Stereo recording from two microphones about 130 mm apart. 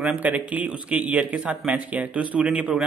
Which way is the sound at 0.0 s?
10° right (ahead or behind).